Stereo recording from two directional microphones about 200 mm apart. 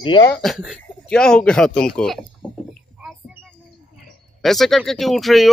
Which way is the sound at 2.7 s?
Centre (ahead or behind).